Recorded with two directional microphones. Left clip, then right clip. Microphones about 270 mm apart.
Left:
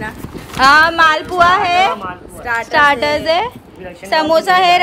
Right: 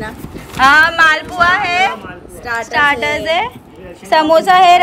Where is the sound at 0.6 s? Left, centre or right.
Centre.